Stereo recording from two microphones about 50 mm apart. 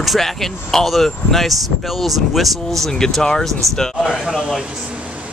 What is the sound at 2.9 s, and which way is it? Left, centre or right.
Speech, centre.